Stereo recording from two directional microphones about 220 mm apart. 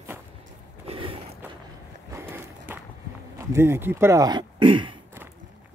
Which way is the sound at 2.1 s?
10° right (ahead or behind).